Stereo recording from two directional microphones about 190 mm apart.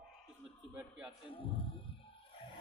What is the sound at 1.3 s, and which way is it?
Speech, 30° left (ahead or behind).